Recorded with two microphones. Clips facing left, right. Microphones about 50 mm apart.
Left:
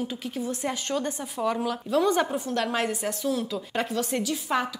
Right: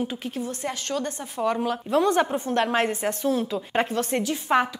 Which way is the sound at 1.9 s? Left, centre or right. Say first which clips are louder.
Right 2 dB; right.